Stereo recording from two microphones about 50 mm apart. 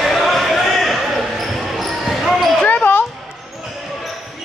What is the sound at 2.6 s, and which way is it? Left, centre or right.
Basketball bounce, left.